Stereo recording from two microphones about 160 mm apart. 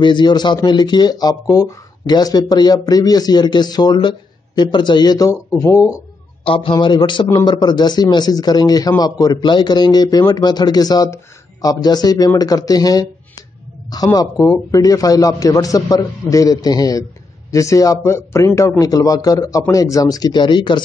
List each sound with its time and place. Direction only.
0.0 s speech: 30° left (ahead or behind)
6.4 s speech: 35° left (ahead or behind)